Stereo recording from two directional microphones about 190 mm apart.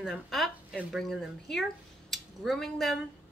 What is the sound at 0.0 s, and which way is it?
Speech, centre (ahead or behind).